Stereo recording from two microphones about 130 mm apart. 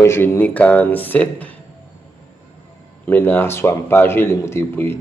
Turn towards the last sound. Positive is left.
turn(degrees=20)  # may be behind; listen again after turning